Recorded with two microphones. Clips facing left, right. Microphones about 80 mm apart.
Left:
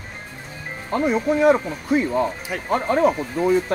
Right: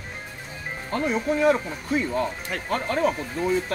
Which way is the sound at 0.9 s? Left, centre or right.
Centre.